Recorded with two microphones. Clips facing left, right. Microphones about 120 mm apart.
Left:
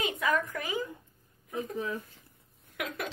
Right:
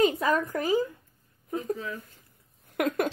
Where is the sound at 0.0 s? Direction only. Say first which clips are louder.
Right 6 dB; 35° right (ahead or behind).